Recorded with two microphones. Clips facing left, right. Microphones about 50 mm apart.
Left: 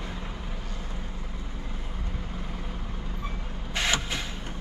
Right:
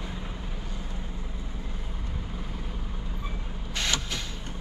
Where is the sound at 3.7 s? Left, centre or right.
Centre.